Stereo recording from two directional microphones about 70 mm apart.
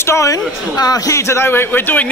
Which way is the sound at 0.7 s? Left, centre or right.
Left.